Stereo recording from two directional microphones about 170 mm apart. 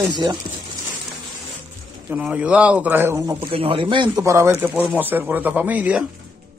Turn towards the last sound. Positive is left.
turn(degrees=-10)  # may be behind; listen again after turning